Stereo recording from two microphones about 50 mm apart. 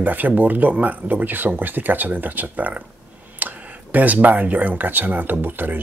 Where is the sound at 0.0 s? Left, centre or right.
Right.